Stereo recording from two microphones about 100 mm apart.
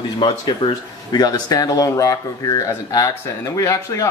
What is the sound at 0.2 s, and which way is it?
Speech, 50° left (ahead or behind).